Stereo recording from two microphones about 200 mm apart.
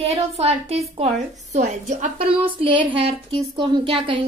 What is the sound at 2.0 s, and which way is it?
A woman's voice, 30° right (ahead or behind).